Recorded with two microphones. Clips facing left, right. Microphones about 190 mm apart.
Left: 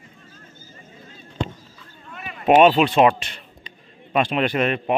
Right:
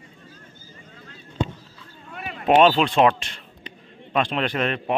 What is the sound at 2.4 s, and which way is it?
Speech, 5° left (ahead or behind).